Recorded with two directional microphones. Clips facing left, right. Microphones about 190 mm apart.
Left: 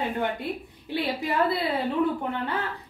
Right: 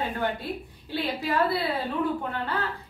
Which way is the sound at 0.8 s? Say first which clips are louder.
Left 1 dB; 20° left (ahead or behind).